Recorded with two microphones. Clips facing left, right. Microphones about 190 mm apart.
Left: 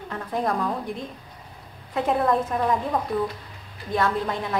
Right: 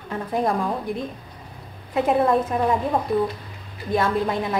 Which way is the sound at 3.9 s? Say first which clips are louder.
Right 3 dB; 10° right (ahead or behind).